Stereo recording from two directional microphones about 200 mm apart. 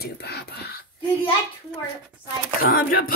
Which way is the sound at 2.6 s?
45° left (ahead or behind).